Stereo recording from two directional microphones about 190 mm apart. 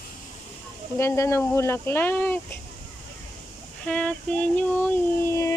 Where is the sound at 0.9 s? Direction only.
15° left (ahead or behind).